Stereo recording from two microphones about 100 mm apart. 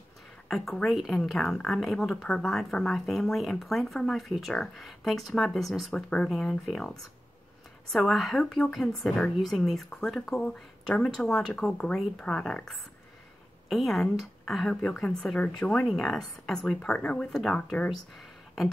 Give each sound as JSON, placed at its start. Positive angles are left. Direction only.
{"t": 0.5, "sound": "speech", "side_deg": 0}